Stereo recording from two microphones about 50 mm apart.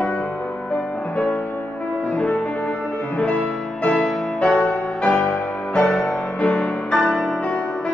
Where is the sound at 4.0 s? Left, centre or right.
Centre.